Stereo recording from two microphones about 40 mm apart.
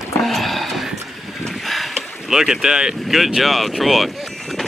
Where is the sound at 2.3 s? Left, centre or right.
Centre.